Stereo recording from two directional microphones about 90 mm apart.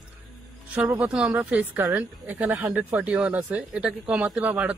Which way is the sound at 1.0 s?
10° right (ahead or behind).